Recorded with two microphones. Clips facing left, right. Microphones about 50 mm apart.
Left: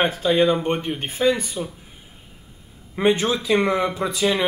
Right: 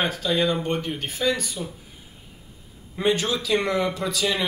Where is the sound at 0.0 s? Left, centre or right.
Left.